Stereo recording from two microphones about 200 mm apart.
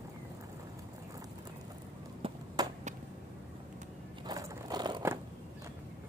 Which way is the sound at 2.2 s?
25° right (ahead or behind).